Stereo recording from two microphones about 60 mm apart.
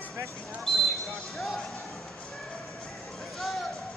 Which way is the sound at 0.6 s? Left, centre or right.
Centre.